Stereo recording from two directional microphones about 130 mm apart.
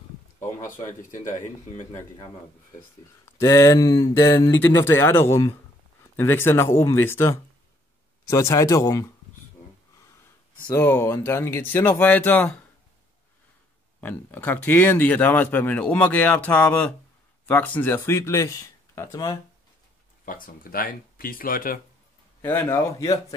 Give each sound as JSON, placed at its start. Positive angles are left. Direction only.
{"t": 3.3, "sound": "speech", "side_deg": 25}
{"t": 10.7, "sound": "speech", "side_deg": 15}
{"t": 14.0, "sound": "speech", "side_deg": 15}
{"t": 20.2, "sound": "speech", "side_deg": 90}
{"t": 22.4, "sound": "speech", "side_deg": 15}